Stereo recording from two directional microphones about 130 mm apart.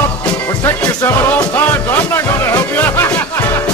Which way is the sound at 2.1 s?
15° left (ahead or behind).